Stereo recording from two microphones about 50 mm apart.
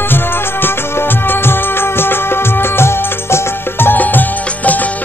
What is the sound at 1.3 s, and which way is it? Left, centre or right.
Music of bollywood, left.